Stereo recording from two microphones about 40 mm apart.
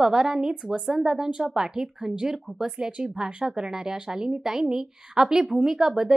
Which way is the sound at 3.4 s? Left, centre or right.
Centre.